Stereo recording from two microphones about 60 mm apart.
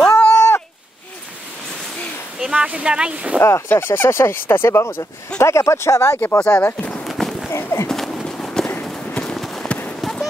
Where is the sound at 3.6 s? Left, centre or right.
Left.